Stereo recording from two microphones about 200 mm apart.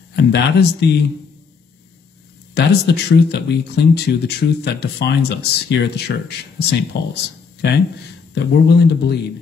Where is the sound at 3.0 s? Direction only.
55° left (ahead or behind).